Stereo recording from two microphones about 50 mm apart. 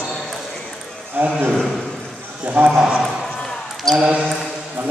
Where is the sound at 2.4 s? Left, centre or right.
Right.